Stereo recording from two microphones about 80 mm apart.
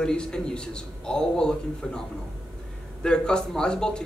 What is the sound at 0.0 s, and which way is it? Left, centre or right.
Speech, centre.